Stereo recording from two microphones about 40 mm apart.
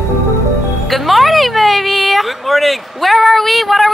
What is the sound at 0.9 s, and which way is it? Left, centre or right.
A woman's voice, centre.